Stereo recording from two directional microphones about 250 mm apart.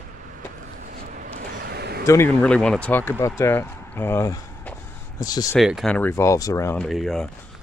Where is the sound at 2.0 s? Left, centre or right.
Centre.